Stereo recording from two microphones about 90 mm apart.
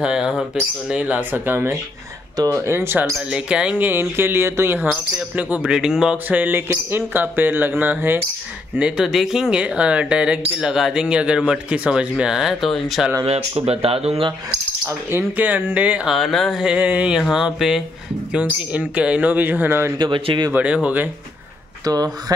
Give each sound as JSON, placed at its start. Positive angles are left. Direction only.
{"t": 0.0, "sound": "speech", "side_deg": -10}
{"t": 2.3, "sound": "speech", "side_deg": -35}
{"t": 3.2, "sound": "speech", "side_deg": -10}
{"t": 4.9, "sound": "speech", "side_deg": -15}
{"t": 6.2, "sound": "speech", "side_deg": -20}
{"t": 8.7, "sound": "speech", "side_deg": -10}
{"t": 13.2, "sound": "speech", "side_deg": -90}
{"t": 14.9, "sound": "speech", "side_deg": -25}
{"t": 16.1, "sound": "speech", "side_deg": 0}
{"t": 16.6, "sound": "speech", "side_deg": -15}
{"t": 20.0, "sound": "speech", "side_deg": -60}
{"t": 20.5, "sound": "speech", "side_deg": -15}
{"t": 21.8, "sound": "speech", "side_deg": -45}